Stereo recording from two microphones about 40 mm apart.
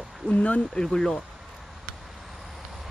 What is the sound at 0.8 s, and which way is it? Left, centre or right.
Speech, centre.